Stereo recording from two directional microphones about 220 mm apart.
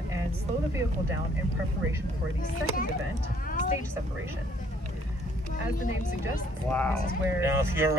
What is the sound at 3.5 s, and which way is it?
Music, 35° left (ahead or behind).